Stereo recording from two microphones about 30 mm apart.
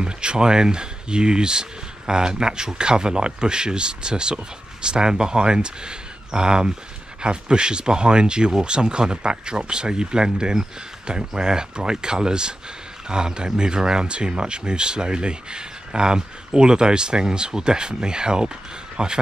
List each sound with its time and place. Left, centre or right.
0.0 s speech: right